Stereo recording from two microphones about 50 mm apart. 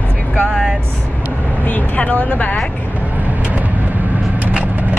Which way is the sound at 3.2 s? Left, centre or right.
Right.